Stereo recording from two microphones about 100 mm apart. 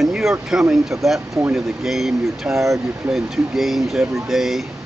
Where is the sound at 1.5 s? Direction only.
5° right (ahead or behind).